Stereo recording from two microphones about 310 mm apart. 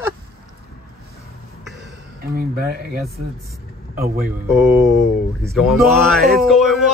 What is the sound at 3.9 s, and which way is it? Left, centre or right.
Speech, right.